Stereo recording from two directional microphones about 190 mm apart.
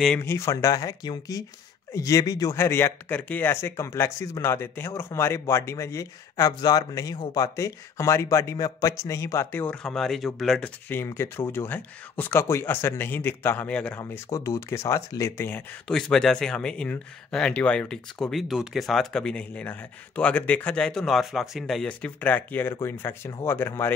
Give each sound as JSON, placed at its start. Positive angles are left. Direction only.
{"t": 0.0, "sound": "speech", "side_deg": 10}